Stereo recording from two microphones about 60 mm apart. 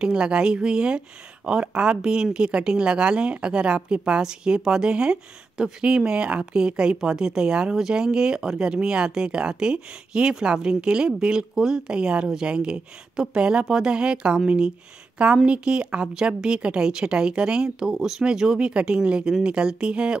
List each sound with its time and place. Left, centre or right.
0.0 s speech: centre